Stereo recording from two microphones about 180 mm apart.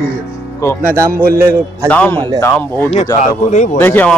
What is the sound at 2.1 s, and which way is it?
Speech, 25° right (ahead or behind).